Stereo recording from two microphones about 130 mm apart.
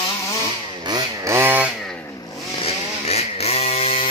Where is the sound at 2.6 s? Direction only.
50° left (ahead or behind).